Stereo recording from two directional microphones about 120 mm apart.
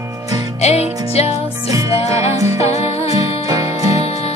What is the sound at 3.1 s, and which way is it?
Music, 30° right (ahead or behind).